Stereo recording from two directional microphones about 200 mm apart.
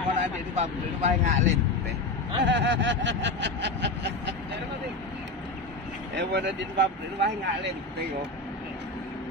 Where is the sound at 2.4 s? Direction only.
60° right (ahead or behind).